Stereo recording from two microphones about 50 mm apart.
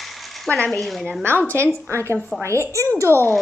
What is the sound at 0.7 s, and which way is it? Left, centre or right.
Speech, centre.